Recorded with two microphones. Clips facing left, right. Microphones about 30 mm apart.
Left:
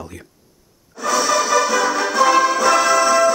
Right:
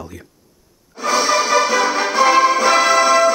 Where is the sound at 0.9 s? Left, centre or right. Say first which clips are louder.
Right 1 dB; right.